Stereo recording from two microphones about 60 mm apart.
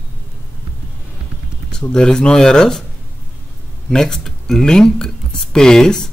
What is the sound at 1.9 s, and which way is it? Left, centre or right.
Speech, centre.